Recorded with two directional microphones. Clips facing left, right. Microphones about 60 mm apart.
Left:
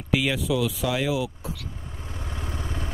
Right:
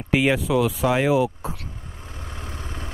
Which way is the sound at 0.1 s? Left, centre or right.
Right.